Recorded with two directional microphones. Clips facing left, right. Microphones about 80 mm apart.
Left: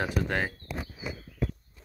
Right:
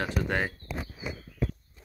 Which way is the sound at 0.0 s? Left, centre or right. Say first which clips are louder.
Even; centre.